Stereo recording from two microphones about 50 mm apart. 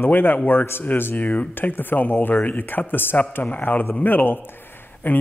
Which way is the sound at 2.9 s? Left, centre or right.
Left.